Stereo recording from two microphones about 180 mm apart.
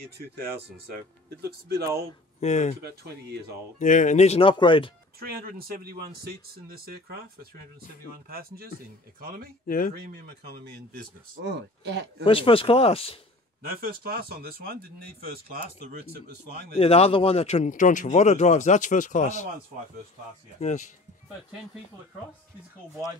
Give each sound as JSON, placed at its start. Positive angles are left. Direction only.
{"t": 1.7, "sound": "speech", "side_deg": -60}
{"t": 2.4, "sound": "speech", "side_deg": 40}
{"t": 2.8, "sound": "speech", "side_deg": -65}
{"t": 3.8, "sound": "speech", "side_deg": 45}
{"t": 5.2, "sound": "speech", "side_deg": -55}
{"t": 8.3, "sound": "speech", "side_deg": -55}
{"t": 9.7, "sound": "speech", "side_deg": 50}
{"t": 9.9, "sound": "speech", "side_deg": -65}
{"t": 12.3, "sound": "speech", "side_deg": 30}
{"t": 13.6, "sound": "speech", "side_deg": -55}
{"t": 16.7, "sound": "speech", "side_deg": 35}